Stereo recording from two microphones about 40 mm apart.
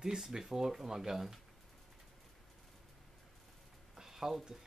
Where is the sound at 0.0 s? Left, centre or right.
Centre.